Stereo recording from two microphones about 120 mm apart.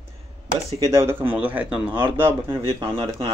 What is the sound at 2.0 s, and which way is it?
Speech, 40° right (ahead or behind).